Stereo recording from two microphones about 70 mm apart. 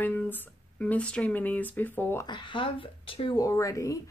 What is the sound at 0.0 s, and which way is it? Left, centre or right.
A woman's voice, left.